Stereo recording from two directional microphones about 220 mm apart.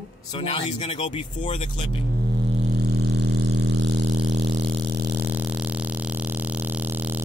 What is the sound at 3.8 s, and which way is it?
Vehicle, 50° right (ahead or behind).